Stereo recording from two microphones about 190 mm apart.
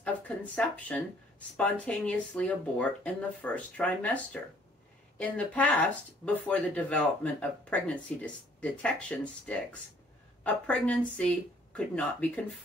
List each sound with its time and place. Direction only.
0.0 s speech: 5° left (ahead or behind)